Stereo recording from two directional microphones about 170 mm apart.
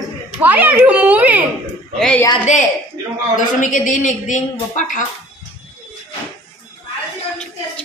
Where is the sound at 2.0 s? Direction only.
5° left (ahead or behind).